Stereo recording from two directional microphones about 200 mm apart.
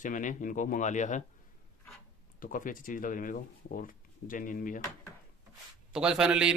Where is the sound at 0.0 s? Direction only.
40° left (ahead or behind).